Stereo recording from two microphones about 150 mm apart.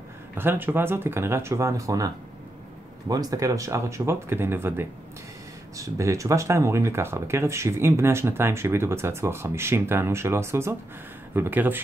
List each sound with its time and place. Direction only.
0.3 s speech: 15° right (ahead or behind)
3.1 s speech: 25° right (ahead or behind)